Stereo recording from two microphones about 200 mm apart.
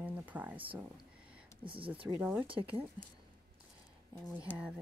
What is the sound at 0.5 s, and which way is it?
Speech, 25° right (ahead or behind).